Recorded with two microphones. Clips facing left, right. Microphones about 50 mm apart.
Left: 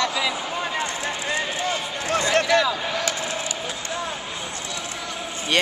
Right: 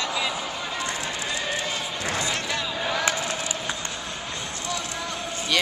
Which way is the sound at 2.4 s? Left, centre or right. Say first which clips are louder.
Left 10 dB; left.